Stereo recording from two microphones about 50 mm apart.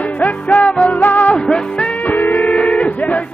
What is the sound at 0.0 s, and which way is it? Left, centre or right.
Music, left.